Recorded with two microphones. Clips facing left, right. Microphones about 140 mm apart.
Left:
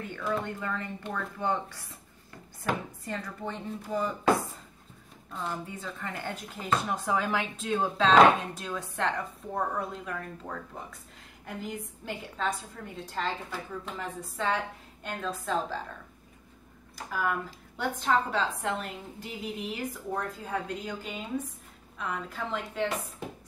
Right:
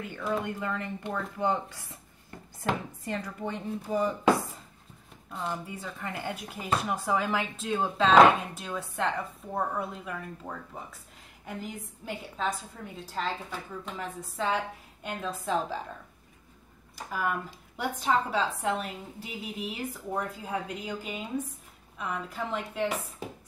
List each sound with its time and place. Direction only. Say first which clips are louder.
0.1 s speech: right 1 dB; 10° right (ahead or behind)
3.1 s speech: right 2 dB; 15° right (ahead or behind)
5.3 s speech: right 1 dB; 5° right (ahead or behind)
17.1 s speech: even; 5° right (ahead or behind)